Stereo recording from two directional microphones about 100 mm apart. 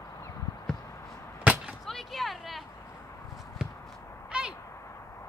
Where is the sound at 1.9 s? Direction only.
Centre (ahead or behind).